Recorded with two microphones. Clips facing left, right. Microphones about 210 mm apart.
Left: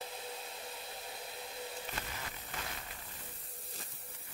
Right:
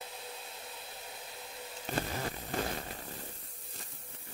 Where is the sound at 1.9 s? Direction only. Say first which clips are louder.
Right 9 dB; 40° right (ahead or behind).